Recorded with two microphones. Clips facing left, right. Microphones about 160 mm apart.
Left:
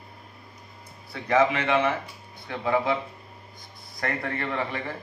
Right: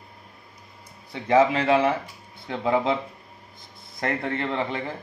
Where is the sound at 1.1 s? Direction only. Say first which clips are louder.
Right 3 dB; 30° right (ahead or behind).